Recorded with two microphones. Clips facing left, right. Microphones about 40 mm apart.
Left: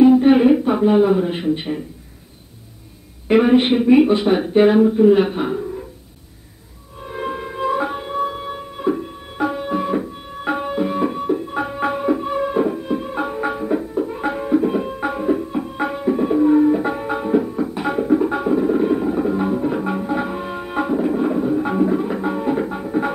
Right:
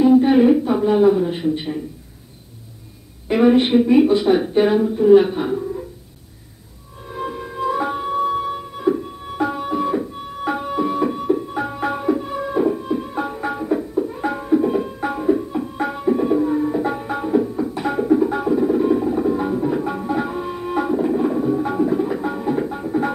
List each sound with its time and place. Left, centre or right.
0.2 s speech: left
3.3 s speech: left
7.1 s music: left
7.7 s music: centre